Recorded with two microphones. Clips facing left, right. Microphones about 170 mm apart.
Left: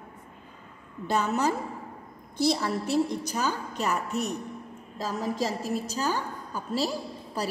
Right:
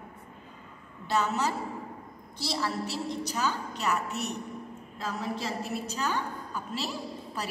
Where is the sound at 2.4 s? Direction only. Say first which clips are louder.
Left 6 dB; 50° left (ahead or behind).